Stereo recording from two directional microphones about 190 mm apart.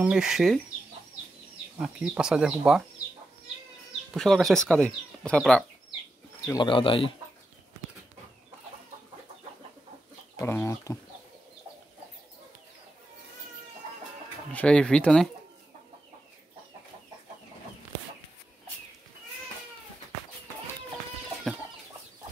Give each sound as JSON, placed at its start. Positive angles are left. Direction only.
{"t": 0.0, "sound": "speech", "side_deg": -5}
{"t": 1.8, "sound": "speech", "side_deg": -5}
{"t": 4.1, "sound": "speech", "side_deg": 0}
{"t": 6.4, "sound": "speech", "side_deg": 20}
{"t": 10.3, "sound": "speech", "side_deg": 15}
{"t": 14.5, "sound": "speech", "side_deg": 5}